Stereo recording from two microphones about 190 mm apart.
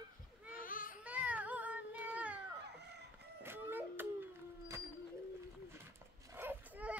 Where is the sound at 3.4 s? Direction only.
10° right (ahead or behind).